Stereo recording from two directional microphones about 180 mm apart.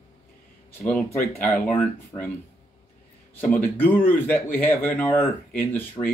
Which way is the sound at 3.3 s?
10° left (ahead or behind).